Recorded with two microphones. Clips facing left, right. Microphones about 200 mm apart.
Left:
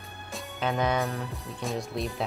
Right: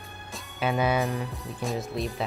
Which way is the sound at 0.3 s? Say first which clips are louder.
Even; centre (ahead or behind).